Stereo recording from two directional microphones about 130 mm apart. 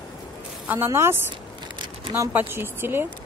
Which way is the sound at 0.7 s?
20° right (ahead or behind).